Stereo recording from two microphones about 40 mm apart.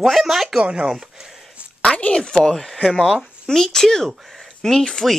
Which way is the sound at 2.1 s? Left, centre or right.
Left.